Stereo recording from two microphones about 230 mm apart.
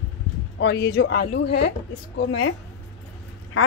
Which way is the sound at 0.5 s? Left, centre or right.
Left.